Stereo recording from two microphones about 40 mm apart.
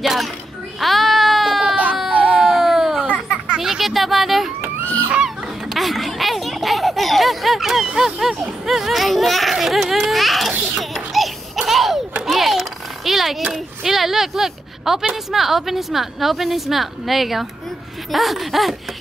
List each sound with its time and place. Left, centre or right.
0.0 s speech: centre
0.7 s baby cry: centre
2.0 s baby cry: right
2.4 s a sound: centre
5.8 s a sound: centre
8.6 s a child's voice: centre
10.8 s music: centre
12.3 s a sound: centre
13.5 s a woman's voice: centre